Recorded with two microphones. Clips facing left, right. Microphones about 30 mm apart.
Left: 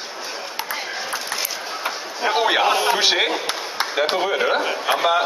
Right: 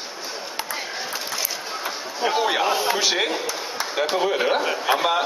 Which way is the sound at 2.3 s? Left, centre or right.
Left.